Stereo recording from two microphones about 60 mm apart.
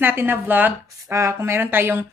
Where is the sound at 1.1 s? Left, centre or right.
Right.